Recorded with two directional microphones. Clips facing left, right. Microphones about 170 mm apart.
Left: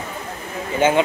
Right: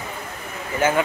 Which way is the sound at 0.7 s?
25° left (ahead or behind).